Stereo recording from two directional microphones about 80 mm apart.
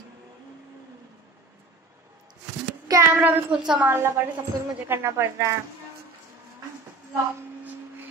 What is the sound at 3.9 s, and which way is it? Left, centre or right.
A woman's voice, right.